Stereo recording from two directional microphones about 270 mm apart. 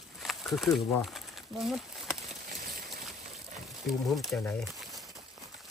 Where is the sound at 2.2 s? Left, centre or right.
Right.